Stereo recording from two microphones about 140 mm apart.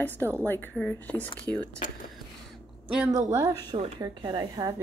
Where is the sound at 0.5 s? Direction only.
10° left (ahead or behind).